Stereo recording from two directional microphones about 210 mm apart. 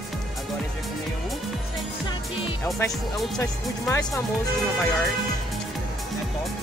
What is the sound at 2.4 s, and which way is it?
Music, 15° left (ahead or behind).